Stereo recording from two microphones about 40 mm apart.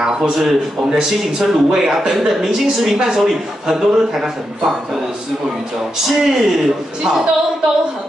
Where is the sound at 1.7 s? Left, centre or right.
Centre.